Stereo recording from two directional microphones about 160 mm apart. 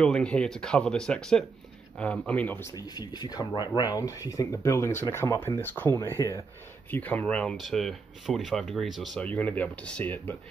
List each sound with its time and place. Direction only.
0.0 s speech: 5° left (ahead or behind)